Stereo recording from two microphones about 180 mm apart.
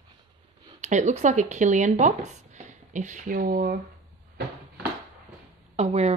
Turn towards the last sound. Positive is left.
turn(degrees=-35)  # may be behind; listen again after turning